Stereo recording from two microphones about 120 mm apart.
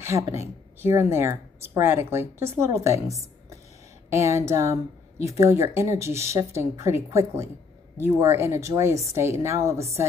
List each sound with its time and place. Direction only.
0.0 s speech: 25° right (ahead or behind)